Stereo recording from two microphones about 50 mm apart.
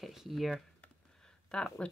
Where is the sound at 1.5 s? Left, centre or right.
Centre.